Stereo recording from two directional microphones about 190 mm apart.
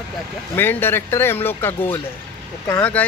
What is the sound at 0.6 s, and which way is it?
Speech, 10° left (ahead or behind).